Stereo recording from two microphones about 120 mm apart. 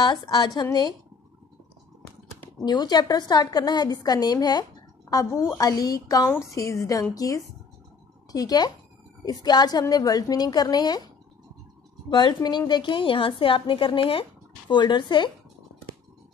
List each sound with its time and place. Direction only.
0.0 s a woman's voice: 40° left (ahead or behind)
2.6 s a woman's voice: 35° left (ahead or behind)
12.1 s a woman's voice: 40° left (ahead or behind)